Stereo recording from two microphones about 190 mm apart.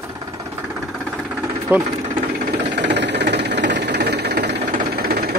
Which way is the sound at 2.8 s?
65° right (ahead or behind).